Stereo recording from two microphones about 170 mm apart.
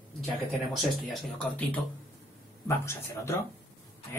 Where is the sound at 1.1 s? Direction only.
10° left (ahead or behind).